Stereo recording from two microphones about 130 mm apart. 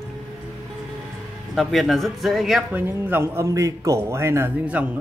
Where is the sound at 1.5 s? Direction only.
Centre (ahead or behind).